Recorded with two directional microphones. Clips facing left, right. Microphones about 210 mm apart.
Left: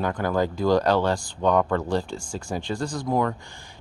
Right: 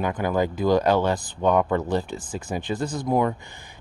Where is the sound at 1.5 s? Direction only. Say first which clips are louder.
Right 1 dB; 5° right (ahead or behind).